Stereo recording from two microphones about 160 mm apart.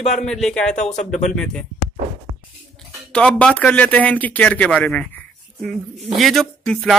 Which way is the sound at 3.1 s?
5° left (ahead or behind).